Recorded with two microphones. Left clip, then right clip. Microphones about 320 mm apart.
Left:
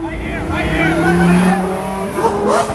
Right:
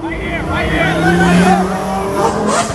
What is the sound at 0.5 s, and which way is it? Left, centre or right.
Vehicle, right.